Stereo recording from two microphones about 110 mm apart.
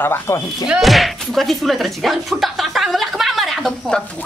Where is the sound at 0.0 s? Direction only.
20° left (ahead or behind).